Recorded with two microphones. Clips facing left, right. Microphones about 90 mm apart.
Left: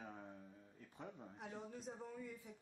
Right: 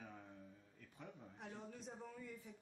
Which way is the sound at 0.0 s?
25° left (ahead or behind).